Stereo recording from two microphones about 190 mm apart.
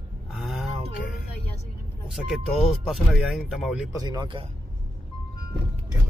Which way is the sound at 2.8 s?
Centre (ahead or behind).